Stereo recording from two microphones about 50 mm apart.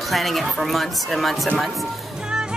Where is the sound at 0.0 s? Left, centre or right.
Centre.